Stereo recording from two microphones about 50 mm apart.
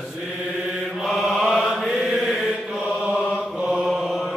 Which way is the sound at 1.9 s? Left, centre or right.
Centre.